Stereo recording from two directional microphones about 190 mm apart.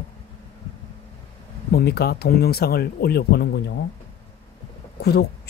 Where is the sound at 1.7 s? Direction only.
55° left (ahead or behind).